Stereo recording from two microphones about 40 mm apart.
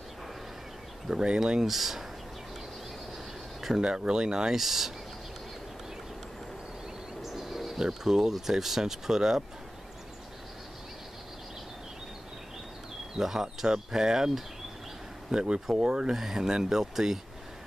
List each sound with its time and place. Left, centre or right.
1.0 s speech: right
1.4 s speech: centre
3.6 s speech: centre
4.6 s speech: centre
7.2 s insect: centre
7.8 s speech: centre
13.2 s speech: centre
16.1 s speech: centre